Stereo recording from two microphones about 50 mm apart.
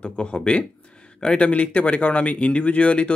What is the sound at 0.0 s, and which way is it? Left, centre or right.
Speech, left.